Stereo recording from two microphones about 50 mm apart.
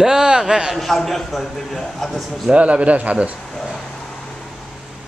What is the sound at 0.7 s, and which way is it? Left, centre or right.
A man's voice, centre.